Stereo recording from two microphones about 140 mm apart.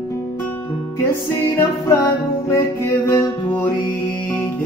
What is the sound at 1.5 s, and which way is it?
Music, 20° left (ahead or behind).